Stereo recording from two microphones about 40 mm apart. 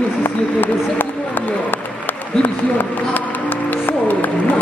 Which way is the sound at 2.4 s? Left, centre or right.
Left.